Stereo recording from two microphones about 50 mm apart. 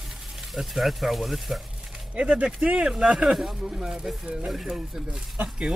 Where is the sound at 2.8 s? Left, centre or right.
Centre.